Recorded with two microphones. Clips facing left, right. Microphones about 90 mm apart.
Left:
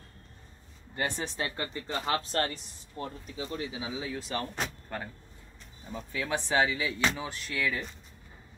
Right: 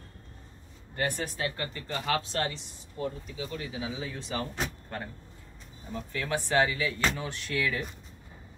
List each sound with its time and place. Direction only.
1.0 s speech: 25° left (ahead or behind)
2.3 s speech: 40° left (ahead or behind)
3.5 s speech: 20° left (ahead or behind)
3.8 s speech: 5° left (ahead or behind)